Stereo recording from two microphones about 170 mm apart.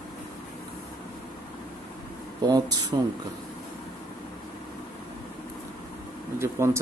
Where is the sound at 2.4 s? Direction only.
25° right (ahead or behind).